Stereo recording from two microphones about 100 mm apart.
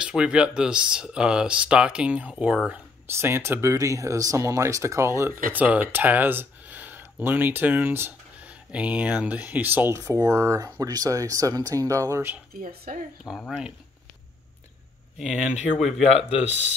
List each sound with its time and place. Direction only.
0.0 s speech: 10° right (ahead or behind)
3.2 s speech: 25° right (ahead or behind)
9.9 s speech: 30° right (ahead or behind)
13.5 s speech: 5° right (ahead or behind)
15.1 s speech: centre (ahead or behind)
16.1 s speech: 90° left